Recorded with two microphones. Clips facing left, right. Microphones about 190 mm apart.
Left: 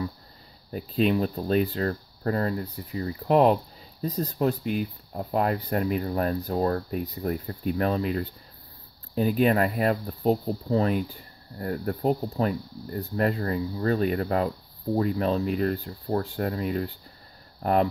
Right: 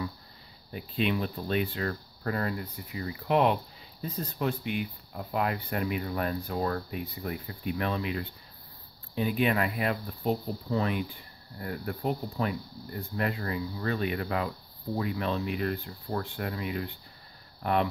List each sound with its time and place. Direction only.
0.7 s speech: 40° left (ahead or behind)